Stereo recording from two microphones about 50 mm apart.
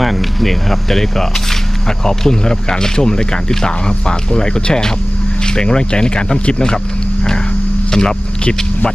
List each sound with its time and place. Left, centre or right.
0.0 s speech: centre
7.9 s speech: centre